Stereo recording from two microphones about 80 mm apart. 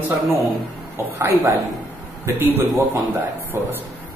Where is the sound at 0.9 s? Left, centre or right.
Right.